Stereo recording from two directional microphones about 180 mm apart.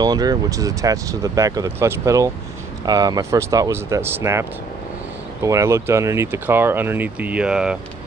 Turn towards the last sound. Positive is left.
turn(degrees=-5)  # may be behind; listen again after turning